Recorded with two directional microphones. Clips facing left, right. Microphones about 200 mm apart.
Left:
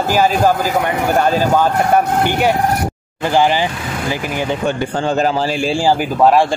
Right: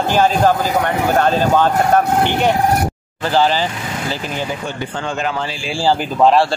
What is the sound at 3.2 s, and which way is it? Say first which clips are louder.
Speech: left 1 dB; 15° left (ahead or behind).